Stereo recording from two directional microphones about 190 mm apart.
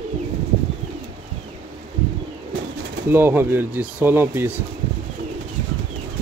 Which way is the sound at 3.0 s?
10° right (ahead or behind).